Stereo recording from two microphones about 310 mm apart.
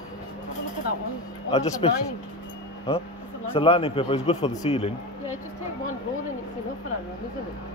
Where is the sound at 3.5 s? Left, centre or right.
Centre.